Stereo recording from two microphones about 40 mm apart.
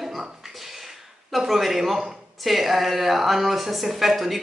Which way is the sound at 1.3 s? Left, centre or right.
Centre.